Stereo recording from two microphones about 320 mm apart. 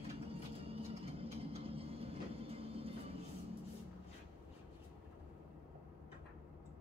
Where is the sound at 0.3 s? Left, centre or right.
Centre.